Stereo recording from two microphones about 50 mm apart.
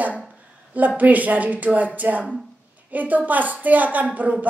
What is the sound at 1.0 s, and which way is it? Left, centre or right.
Speech, right.